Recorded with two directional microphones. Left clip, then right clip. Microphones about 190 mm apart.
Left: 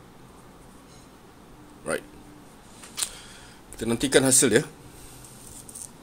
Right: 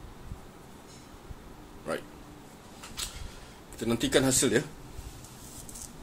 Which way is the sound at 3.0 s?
40° left (ahead or behind).